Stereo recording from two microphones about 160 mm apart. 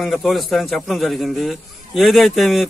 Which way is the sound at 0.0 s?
Centre (ahead or behind).